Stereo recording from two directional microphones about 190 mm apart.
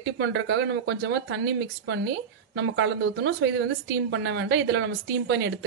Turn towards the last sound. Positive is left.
turn(degrees=-65)  # may be behind; listen again after turning